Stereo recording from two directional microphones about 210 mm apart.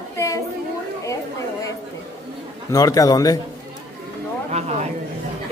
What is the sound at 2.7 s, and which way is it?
Speech, 15° left (ahead or behind).